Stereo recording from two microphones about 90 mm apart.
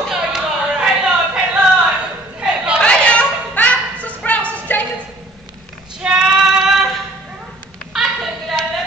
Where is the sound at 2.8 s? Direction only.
10° left (ahead or behind).